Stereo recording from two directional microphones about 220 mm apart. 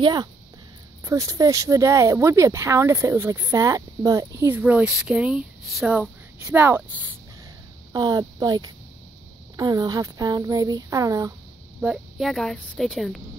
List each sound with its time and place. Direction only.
0.0 s speech: 20° right (ahead or behind)
7.9 s speech: 15° right (ahead or behind)
11.8 s a woman's voice: centre (ahead or behind)